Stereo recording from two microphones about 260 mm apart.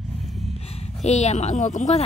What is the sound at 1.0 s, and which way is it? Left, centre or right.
Speech, left.